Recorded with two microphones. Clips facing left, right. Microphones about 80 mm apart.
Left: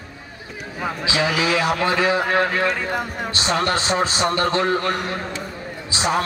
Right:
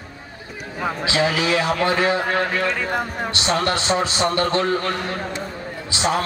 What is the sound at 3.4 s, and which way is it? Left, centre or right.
A man's voice, left.